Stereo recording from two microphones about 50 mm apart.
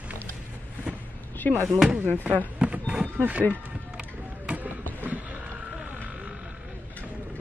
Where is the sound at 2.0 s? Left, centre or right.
Right.